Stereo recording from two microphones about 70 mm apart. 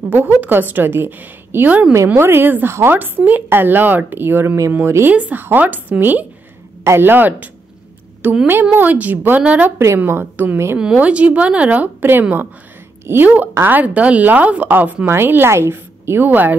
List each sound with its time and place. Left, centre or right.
0.1 s a woman's voice: right
1.7 s speech: right
2.1 s a woman's voice: right
5.1 s a woman's voice: right
10.0 s a woman's voice: right
11.0 s a woman's voice: centre